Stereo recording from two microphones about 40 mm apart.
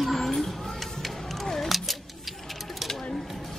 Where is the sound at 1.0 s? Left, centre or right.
Centre.